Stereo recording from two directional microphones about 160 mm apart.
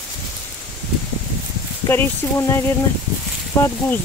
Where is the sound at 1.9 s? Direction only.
15° left (ahead or behind).